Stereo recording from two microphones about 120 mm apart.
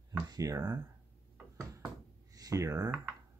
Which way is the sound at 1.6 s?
25° right (ahead or behind).